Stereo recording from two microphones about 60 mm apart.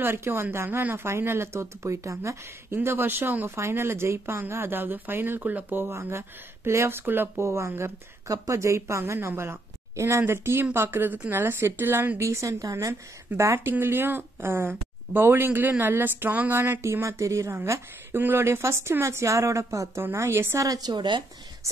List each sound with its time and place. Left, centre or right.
0.0 s speech: right
2.7 s speech: right
3.4 s speech: right
5.8 s speech: right
7.1 s speech: right
7.4 s speech: right
8.3 s a woman's voice: right
12.2 s a woman's voice: right
13.4 s speech: right
16.8 s speech: right
18.1 s speech: right
20.0 s speech: right
20.6 s a woman's voice: right